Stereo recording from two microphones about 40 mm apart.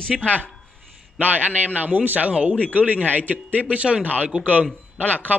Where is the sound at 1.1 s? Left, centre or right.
Right.